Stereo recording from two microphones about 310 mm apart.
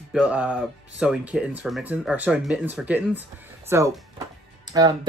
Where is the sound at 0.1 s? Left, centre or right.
Centre.